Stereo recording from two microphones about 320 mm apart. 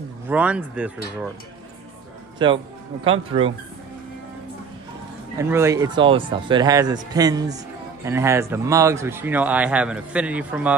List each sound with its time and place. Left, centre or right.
0.3 s speech: centre
2.3 s speech: centre
5.4 s speech: centre